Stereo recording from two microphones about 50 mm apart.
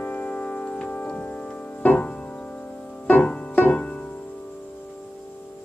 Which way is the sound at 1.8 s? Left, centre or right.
Left.